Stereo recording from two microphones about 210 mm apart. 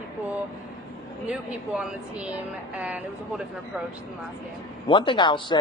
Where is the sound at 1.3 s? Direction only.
5° right (ahead or behind).